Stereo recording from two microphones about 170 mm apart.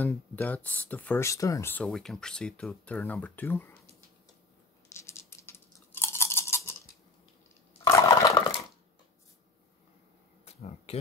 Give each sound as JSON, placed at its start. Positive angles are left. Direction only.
{"t": 0.0, "sound": "speech", "side_deg": 10}
{"t": 4.9, "sound": "toothbrush", "side_deg": 15}
{"t": 7.8, "sound": "a sound", "side_deg": 20}
{"t": 10.4, "sound": "insect", "side_deg": 35}